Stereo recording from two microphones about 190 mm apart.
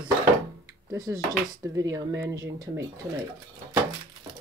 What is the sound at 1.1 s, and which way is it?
Speech, 15° right (ahead or behind).